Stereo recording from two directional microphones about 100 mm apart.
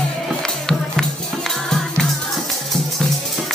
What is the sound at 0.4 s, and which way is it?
Music, 5° left (ahead or behind).